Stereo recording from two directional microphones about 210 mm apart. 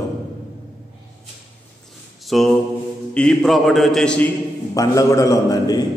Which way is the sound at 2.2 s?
Centre (ahead or behind).